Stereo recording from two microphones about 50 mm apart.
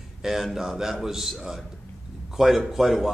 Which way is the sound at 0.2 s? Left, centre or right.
Centre.